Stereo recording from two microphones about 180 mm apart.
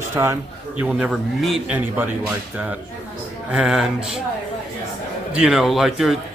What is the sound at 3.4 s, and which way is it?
Speech, 5° right (ahead or behind).